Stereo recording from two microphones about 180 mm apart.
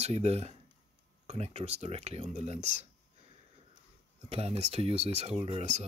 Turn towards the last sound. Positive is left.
turn(degrees=-35)  # may be behind; listen again after turning